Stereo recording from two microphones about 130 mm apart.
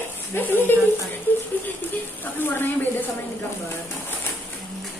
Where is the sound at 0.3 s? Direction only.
15° left (ahead or behind).